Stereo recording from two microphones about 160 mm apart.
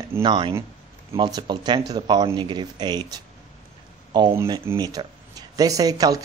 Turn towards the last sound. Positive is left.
turn(degrees=-20)  # may be behind; listen again after turning